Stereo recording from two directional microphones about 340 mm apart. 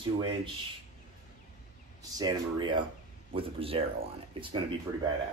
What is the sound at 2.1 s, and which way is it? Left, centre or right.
Speech, centre.